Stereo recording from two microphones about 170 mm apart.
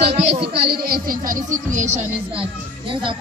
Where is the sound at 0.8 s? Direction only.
60° right (ahead or behind); by 2.4 s 45° right (ahead or behind).